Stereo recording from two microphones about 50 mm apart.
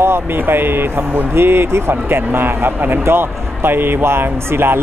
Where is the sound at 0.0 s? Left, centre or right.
Right.